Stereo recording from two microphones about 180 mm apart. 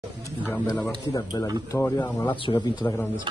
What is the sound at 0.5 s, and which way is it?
Speech, 10° left (ahead or behind).